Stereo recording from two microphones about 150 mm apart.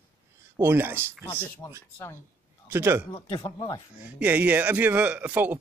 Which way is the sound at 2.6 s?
15° right (ahead or behind).